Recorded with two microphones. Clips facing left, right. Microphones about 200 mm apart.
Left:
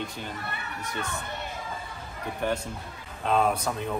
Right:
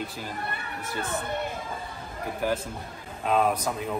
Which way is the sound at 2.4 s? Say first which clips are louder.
Right 1 dB; 5° right (ahead or behind).